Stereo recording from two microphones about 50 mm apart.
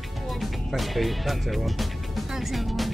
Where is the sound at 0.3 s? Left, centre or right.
Centre.